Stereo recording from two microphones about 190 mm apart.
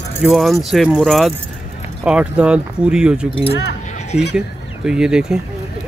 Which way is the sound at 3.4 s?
60° left (ahead or behind).